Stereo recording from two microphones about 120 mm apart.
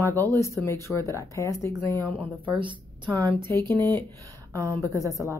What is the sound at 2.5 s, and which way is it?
Speech, 40° right (ahead or behind).